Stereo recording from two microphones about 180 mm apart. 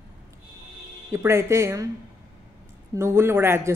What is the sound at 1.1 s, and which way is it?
Speech, 15° right (ahead or behind).